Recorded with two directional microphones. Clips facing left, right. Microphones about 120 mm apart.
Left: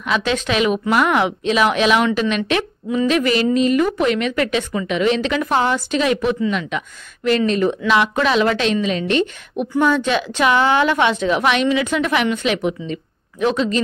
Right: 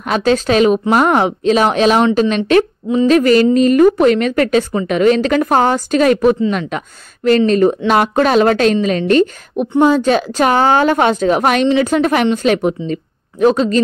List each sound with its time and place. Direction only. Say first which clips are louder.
0.0 s a woman's voice: right 6 dB; 40° right (ahead or behind)